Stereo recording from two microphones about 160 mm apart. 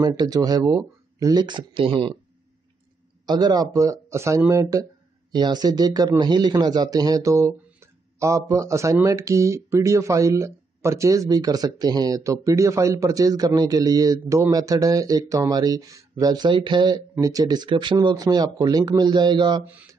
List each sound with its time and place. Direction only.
0.0 s speech: 25° right (ahead or behind)
3.3 s speech: 25° right (ahead or behind)
19.6 s speech: 10° right (ahead or behind)